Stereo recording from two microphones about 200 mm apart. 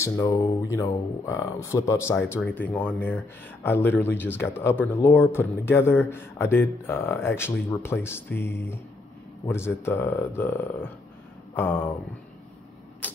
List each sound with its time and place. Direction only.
0.0 s speech: 15° left (ahead or behind)